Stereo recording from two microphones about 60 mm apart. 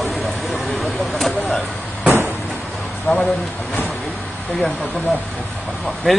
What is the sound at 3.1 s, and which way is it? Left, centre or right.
Speech, left.